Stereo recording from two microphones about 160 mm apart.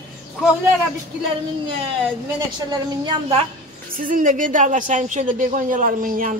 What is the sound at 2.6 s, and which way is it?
Speech, 25° right (ahead or behind).